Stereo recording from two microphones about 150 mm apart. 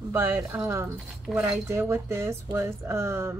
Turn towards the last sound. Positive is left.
turn(degrees=-20)  # may be behind; listen again after turning